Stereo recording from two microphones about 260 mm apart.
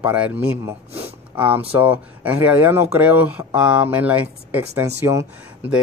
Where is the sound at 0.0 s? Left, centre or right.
Centre.